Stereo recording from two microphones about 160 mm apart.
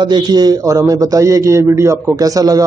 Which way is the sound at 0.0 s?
25° right (ahead or behind).